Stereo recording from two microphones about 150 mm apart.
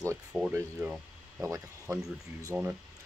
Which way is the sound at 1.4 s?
20° right (ahead or behind).